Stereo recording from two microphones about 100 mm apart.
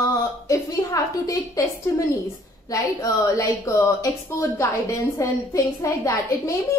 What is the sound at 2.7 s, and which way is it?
A woman's voice, 35° left (ahead or behind).